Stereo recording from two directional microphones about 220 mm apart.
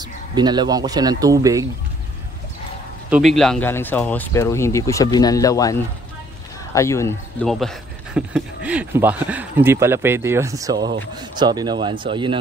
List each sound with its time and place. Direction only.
0.3 s speech: 20° right (ahead or behind)
3.1 s speech: centre (ahead or behind)
7.4 s speech: centre (ahead or behind); by 12.4 s 20° right (ahead or behind)